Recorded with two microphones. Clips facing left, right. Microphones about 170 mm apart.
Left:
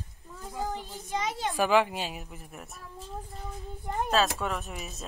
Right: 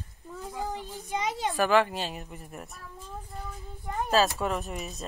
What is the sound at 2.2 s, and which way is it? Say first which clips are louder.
Speech: right 2 dB; centre (ahead or behind).